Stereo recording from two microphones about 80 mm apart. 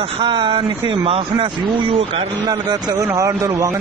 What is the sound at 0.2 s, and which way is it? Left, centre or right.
Speech, right.